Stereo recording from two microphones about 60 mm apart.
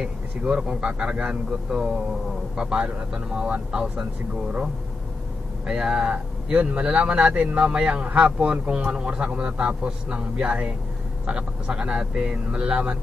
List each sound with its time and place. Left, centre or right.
0.0 s speech: centre
5.7 s speech: centre